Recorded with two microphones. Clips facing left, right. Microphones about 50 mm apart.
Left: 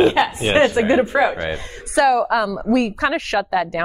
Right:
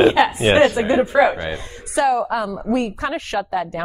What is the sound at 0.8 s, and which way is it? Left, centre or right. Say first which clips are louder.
Speech: left 1 dB; left.